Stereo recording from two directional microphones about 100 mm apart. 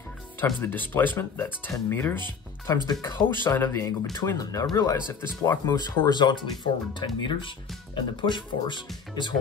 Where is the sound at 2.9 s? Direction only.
45° left (ahead or behind).